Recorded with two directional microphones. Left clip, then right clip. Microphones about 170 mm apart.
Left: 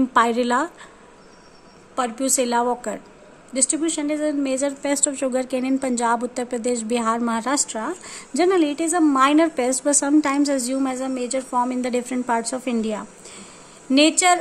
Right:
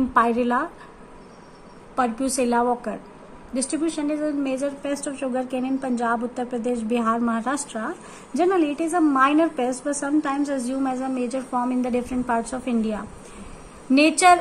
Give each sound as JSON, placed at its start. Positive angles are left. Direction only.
{"t": 0.1, "sound": "a woman's voice", "side_deg": 35}
{"t": 2.0, "sound": "a woman's voice", "side_deg": 30}